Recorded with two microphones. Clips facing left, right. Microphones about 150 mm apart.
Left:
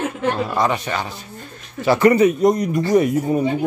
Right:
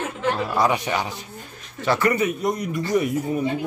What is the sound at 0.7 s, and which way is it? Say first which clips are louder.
Speech: even; 15° right (ahead or behind).